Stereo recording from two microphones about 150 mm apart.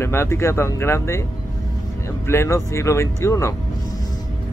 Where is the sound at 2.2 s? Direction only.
20° left (ahead or behind).